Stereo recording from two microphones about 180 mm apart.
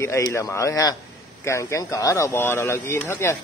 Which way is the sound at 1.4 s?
15° left (ahead or behind).